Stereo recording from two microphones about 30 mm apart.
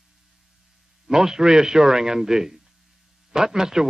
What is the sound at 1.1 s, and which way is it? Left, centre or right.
A man's voice, right.